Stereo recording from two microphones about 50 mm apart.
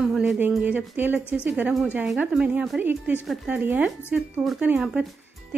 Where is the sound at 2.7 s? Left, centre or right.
Right.